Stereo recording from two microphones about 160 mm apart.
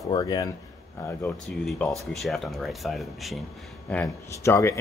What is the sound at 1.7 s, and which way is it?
Speech, centre (ahead or behind).